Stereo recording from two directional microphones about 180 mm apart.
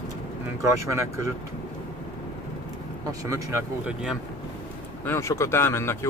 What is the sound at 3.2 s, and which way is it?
Speech, 15° right (ahead or behind).